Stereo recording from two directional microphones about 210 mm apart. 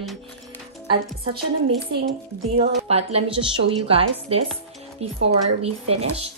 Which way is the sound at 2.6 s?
30° right (ahead or behind).